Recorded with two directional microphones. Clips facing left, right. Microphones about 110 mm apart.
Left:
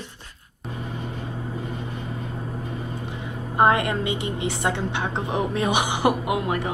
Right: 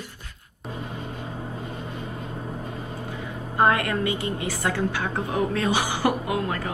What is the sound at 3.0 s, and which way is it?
A woman's voice, 20° left (ahead or behind).